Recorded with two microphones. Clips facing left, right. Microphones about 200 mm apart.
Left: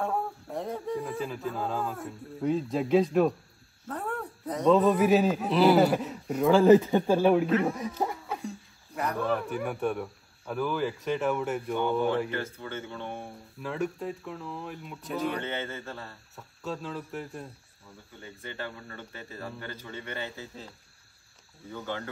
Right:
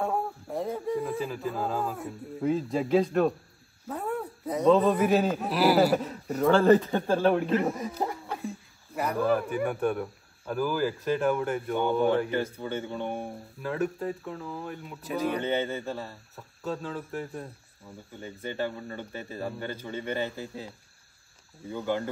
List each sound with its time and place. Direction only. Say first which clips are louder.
0.0 s a man's voice: right 1 dB; centre (ahead or behind)
12.3 s speech: right 5 dB; 15° right (ahead or behind)
13.6 s speech: right 2 dB; centre (ahead or behind)
15.4 s speech: right 6 dB; 15° right (ahead or behind)
16.3 s speech: right 2 dB; centre (ahead or behind)
18.8 s a man's voice: right 6 dB; 20° right (ahead or behind)